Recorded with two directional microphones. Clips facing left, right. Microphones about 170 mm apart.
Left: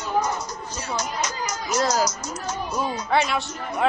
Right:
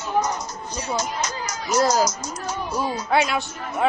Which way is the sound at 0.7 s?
20° right (ahead or behind).